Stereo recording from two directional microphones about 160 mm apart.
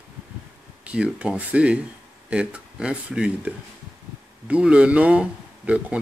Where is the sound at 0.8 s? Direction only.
5° right (ahead or behind).